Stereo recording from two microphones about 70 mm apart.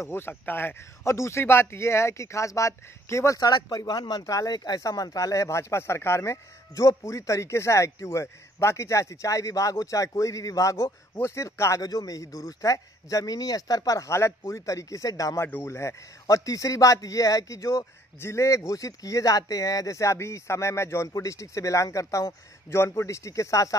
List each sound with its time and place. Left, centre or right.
0.0 s speech: left
1.0 s speech: left
3.3 s speech: left
11.8 s speech: left
15.3 s speech: left
21.1 s speech: left